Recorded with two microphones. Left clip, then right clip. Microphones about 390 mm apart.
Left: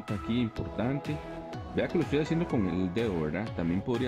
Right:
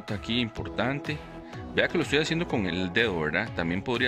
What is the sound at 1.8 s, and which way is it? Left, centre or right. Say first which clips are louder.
Speech: right 4 dB; right.